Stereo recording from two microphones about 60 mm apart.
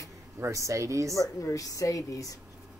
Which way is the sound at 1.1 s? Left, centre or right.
Left.